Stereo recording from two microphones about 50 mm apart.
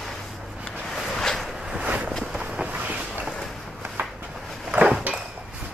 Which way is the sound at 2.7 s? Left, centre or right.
Right.